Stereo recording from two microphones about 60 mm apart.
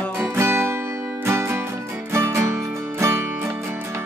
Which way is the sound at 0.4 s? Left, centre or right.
Right.